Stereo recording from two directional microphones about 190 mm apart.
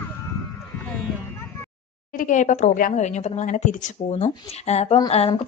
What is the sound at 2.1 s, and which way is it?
A woman's voice, 40° left (ahead or behind).